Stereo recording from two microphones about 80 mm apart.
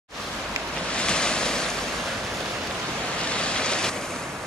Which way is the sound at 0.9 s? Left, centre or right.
Centre.